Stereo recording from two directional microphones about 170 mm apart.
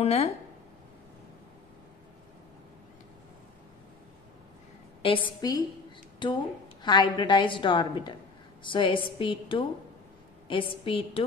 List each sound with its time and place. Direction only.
0.0 s a woman's voice: 35° left (ahead or behind)
5.0 s a woman's voice: 30° left (ahead or behind)